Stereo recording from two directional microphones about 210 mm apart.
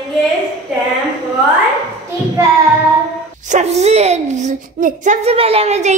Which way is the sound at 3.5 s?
30° right (ahead or behind).